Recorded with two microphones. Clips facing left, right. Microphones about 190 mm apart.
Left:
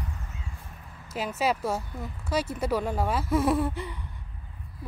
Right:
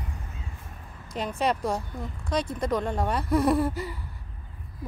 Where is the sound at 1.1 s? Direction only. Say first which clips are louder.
Right 1 dB; 5° left (ahead or behind).